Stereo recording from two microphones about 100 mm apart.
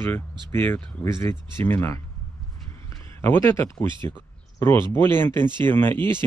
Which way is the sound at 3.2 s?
20° left (ahead or behind).